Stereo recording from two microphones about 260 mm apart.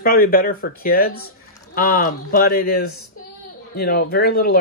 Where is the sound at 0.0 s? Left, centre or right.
Left.